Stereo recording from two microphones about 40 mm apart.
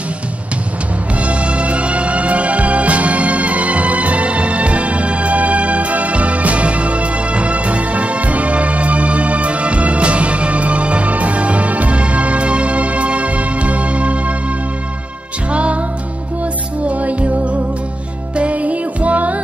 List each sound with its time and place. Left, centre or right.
1.2 s music: right
15.5 s music: right
16.8 s music: right
18.3 s music: right